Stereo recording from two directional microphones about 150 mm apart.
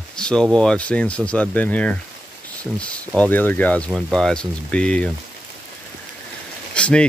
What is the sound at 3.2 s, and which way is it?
Speech, 10° left (ahead or behind).